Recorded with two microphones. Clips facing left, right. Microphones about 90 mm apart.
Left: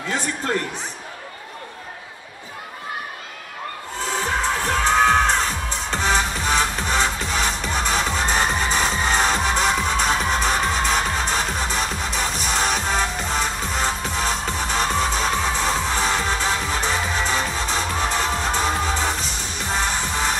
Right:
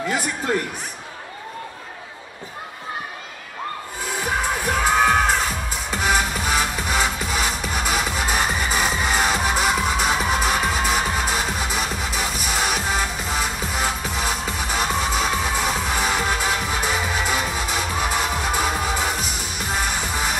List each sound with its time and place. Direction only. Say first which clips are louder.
4.4 s music: right 1 dB; 10° right (ahead or behind)